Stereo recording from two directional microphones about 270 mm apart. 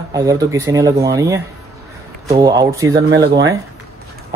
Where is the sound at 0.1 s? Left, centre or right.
Centre.